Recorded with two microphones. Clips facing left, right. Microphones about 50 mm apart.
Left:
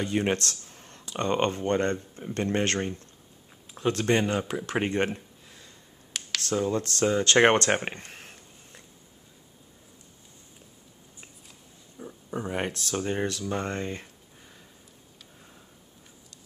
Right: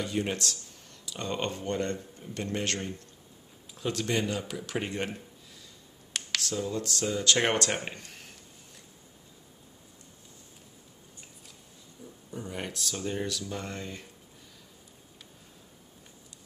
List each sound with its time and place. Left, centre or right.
0.0 s speech: left
12.0 s a sound: left
12.5 s speech: left